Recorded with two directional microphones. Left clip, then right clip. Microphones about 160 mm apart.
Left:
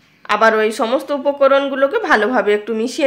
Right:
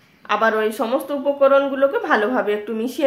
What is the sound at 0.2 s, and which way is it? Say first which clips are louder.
Speech: left 5 dB; 30° left (ahead or behind).